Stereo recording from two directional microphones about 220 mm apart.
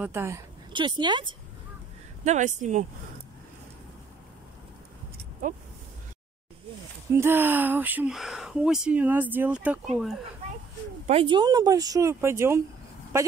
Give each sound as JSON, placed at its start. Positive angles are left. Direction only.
{"t": 0.0, "sound": "speech", "side_deg": -10}
{"t": 0.7, "sound": "speech", "side_deg": -20}
{"t": 2.2, "sound": "speech", "side_deg": -35}
{"t": 7.2, "sound": "speech", "side_deg": -10}
{"t": 11.1, "sound": "speech", "side_deg": -25}